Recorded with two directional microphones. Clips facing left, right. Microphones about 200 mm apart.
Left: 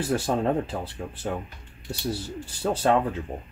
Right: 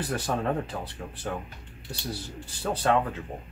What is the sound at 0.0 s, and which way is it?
Speech, 25° left (ahead or behind).